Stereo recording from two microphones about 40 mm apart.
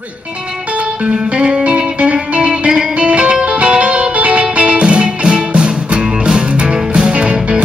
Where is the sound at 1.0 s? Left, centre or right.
Right.